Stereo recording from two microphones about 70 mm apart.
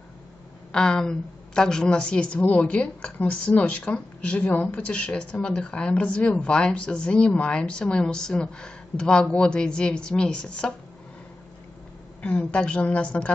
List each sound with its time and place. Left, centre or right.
0.7 s a woman's voice: centre
12.2 s a woman's voice: centre